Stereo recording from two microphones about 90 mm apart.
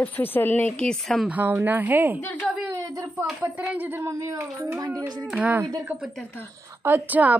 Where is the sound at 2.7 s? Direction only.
40° right (ahead or behind).